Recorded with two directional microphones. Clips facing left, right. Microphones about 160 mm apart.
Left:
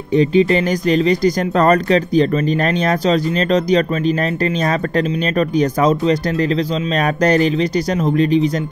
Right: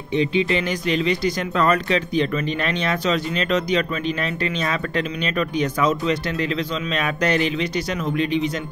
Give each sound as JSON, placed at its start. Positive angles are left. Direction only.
{"t": 0.1, "sound": "speech", "side_deg": 40}